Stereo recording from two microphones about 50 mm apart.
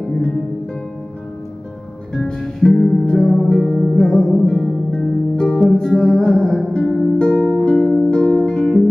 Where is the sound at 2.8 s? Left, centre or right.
Centre.